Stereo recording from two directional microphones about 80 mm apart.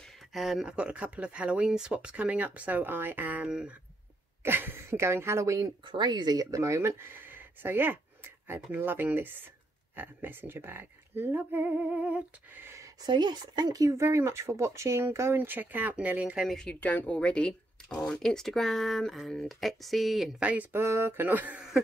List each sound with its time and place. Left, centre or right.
0.3 s speech: centre
0.7 s speech: centre
3.4 s speech: centre
4.4 s a woman's voice: right
5.9 s speech: right; by 12.6 s centre
12.6 s a sound: right
13.0 s speech: right; by 16.4 s centre
16.4 s speech: centre
16.8 s speech: centre
20.3 s speech: centre
20.7 s speech: right